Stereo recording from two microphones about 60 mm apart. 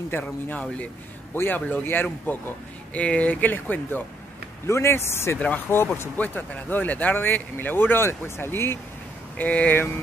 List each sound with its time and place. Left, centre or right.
0.1 s speech: left
1.3 s speech: left
2.9 s speech: left
4.6 s speech: left
5.7 s speech: left
9.4 s speech: left